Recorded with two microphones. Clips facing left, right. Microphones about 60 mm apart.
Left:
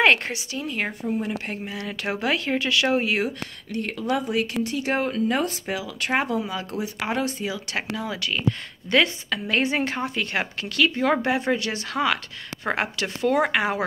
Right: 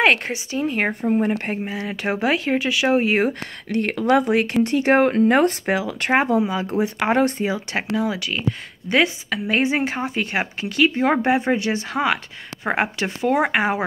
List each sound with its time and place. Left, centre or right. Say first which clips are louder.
0.0 s speech: right 1 dB; centre
0.3 s speech: right 6 dB; right
1.5 s speech: right 5 dB; right
3.1 s speech: right 5 dB; right
3.6 s speech: right 7 dB; right
6.1 s a woman's voice: right 6 dB; right
6.8 s speech: right 8 dB; right
7.7 s a woman's voice: right 6 dB; right